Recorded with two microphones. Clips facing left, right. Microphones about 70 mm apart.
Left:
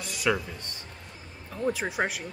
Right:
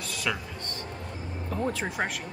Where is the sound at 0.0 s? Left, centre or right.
Centre.